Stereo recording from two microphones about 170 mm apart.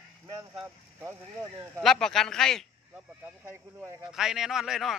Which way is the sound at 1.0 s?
15° right (ahead or behind).